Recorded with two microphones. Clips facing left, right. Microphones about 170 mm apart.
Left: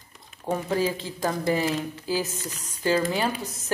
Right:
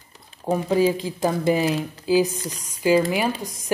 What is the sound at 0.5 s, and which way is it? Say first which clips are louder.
Speech: right 6 dB; 15° right (ahead or behind).